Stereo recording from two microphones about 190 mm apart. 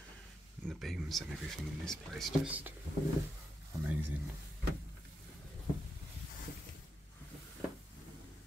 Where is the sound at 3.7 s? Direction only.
15° right (ahead or behind).